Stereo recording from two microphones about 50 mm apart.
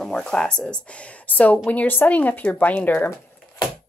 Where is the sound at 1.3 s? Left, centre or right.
Left.